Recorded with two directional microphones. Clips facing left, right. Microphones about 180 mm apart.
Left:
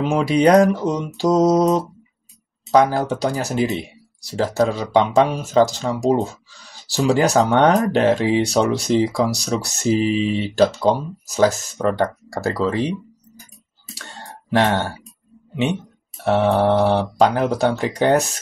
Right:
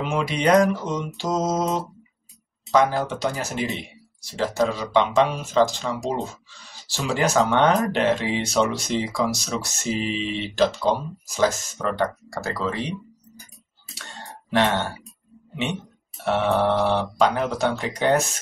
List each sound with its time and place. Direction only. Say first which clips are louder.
0.0 s speech: left 7 dB; 35° left (ahead or behind)
16.3 s speech: left 4 dB; 40° left (ahead or behind)